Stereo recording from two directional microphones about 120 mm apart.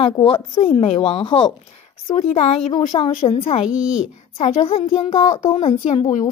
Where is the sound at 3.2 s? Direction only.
55° left (ahead or behind).